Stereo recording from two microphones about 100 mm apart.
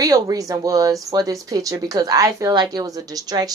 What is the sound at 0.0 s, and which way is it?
A woman's voice, 35° right (ahead or behind).